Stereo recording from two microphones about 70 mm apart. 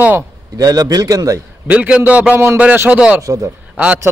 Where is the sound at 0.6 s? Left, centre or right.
Right.